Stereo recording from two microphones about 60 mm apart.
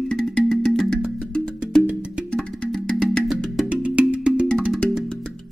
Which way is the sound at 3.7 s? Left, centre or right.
Right.